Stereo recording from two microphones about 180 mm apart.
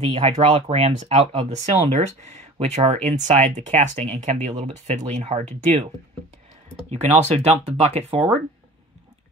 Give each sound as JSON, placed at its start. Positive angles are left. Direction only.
{"t": 0.0, "sound": "speech", "side_deg": -35}
{"t": 6.9, "sound": "speech", "side_deg": -35}